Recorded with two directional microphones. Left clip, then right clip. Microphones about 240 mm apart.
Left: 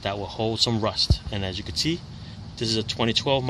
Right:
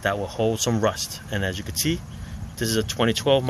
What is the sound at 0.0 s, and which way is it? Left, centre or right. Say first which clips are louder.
Speech: right 4 dB; centre.